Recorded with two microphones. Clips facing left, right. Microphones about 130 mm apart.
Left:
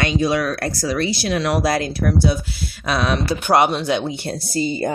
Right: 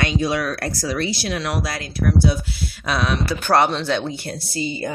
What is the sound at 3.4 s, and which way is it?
Speech, 15° left (ahead or behind).